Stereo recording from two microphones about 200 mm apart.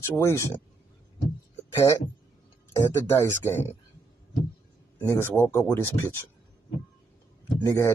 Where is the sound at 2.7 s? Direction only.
15° left (ahead or behind).